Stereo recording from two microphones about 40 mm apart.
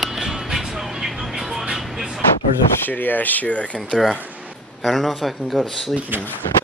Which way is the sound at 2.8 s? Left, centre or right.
Left.